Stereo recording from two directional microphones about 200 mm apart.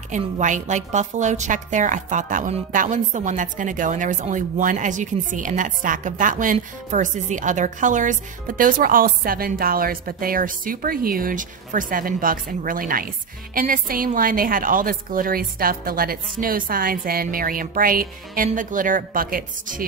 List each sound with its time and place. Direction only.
0.1 s a woman's voice: 40° right (ahead or behind)